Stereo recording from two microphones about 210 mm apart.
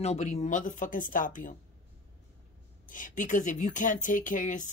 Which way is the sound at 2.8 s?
40° left (ahead or behind).